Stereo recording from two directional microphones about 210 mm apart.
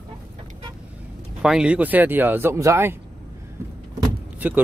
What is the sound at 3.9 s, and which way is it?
Vehicle, 10° right (ahead or behind).